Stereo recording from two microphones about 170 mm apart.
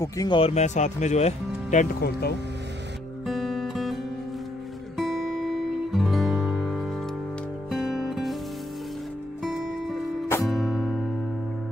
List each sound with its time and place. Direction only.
0.0 s speech: 20° left (ahead or behind)
0.4 s speech: 40° left (ahead or behind)
2.0 s speech: 70° left (ahead or behind)
3.3 s music: centre (ahead or behind)
9.4 s music: centre (ahead or behind)